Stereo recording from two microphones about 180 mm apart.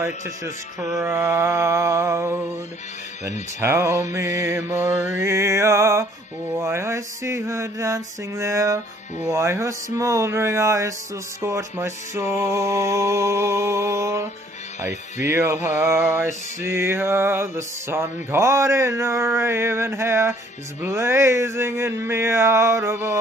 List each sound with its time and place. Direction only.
0.7 s music: 5° right (ahead or behind)
1.1 s music: 15° right (ahead or behind)